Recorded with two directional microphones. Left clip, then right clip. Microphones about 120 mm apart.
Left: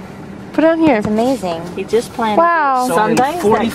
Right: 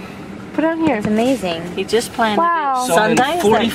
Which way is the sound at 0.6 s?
45° left (ahead or behind).